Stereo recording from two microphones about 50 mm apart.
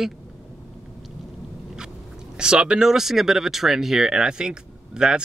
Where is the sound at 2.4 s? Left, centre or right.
Centre.